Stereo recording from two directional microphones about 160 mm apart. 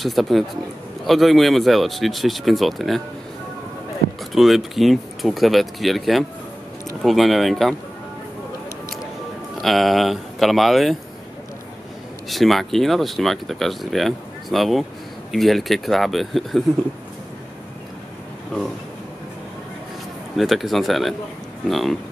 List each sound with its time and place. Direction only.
0.0 s speech: centre (ahead or behind)
4.3 s speech: centre (ahead or behind)
9.6 s speech: centre (ahead or behind)
12.3 s speech: centre (ahead or behind)
20.3 s speech: centre (ahead or behind)